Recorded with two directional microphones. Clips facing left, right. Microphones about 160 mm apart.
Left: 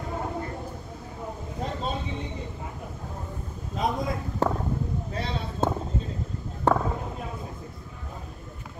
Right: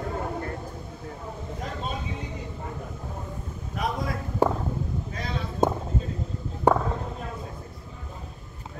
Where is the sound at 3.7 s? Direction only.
25° left (ahead or behind).